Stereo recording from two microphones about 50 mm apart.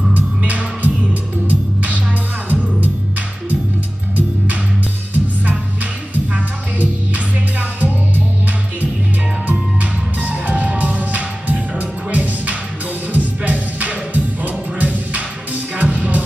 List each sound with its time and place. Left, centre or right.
0.1 s music: right
5.1 s music: right
9.5 s music: right